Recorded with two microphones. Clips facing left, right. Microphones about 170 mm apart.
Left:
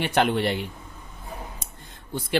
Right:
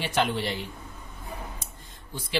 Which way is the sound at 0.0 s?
60° left (ahead or behind).